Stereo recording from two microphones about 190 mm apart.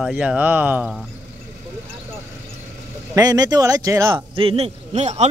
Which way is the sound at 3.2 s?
20° right (ahead or behind).